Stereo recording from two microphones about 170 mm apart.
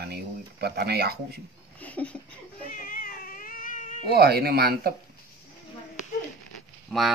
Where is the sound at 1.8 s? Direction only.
10° left (ahead or behind).